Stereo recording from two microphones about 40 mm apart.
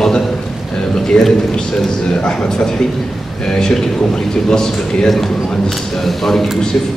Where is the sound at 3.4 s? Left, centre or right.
Centre.